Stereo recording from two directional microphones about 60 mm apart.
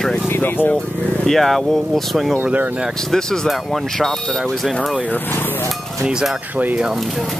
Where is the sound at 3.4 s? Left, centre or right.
Centre.